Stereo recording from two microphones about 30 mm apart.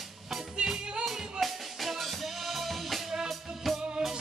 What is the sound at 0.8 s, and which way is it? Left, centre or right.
Music, right.